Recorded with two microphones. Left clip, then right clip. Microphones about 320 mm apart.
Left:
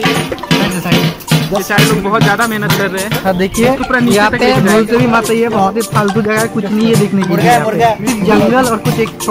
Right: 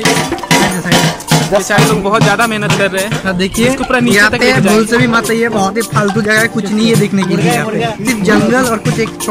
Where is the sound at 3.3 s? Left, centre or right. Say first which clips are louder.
Left 3 dB; centre.